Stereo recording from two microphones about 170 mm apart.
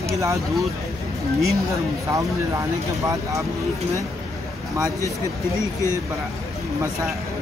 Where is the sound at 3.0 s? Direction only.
20° right (ahead or behind).